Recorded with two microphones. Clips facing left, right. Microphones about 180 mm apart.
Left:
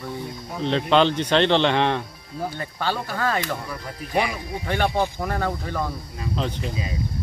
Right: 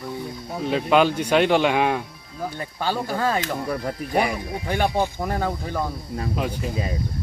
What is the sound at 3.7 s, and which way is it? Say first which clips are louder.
Speech: right 7 dB; 45° right (ahead or behind).